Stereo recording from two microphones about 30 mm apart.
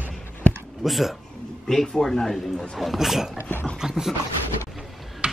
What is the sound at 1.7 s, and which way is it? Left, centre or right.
Speech, centre.